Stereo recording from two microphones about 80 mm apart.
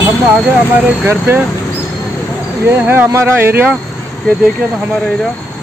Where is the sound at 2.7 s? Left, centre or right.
Right.